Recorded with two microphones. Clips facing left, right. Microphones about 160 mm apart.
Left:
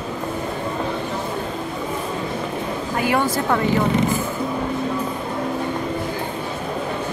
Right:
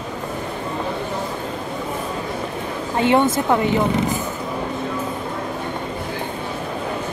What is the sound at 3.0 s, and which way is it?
Speech, 25° right (ahead or behind).